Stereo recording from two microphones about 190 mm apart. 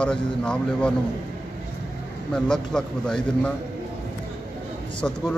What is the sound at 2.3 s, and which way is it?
Speech, 5° left (ahead or behind).